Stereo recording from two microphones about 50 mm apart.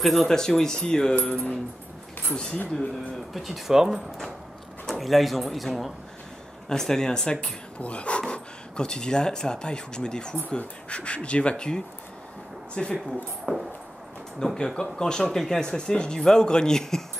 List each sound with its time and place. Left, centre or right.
0.0 s speech: centre
3.3 s speech: centre
3.7 s speech: centre
4.9 s speech: centre
6.7 s speech: centre
7.8 s speech: left